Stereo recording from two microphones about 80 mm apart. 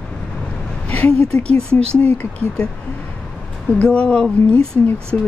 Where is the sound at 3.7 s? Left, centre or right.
Centre.